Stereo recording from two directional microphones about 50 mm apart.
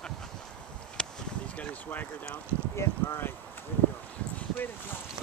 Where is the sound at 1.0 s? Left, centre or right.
Centre.